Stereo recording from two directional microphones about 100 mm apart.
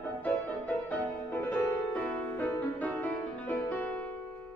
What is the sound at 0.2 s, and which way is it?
Music, 15° left (ahead or behind).